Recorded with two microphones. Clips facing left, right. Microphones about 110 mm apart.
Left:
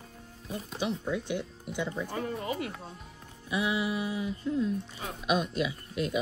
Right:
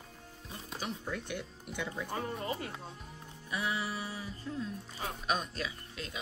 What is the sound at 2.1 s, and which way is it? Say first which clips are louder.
Speech: left 3 dB; 30° right (ahead or behind).